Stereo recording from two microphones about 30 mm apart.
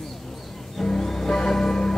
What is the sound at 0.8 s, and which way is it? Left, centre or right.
Music, centre.